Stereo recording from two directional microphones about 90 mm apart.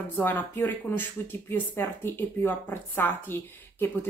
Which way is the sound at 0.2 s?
25° left (ahead or behind).